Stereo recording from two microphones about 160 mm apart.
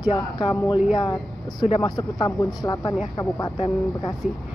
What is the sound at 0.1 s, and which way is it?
Speech, 30° left (ahead or behind).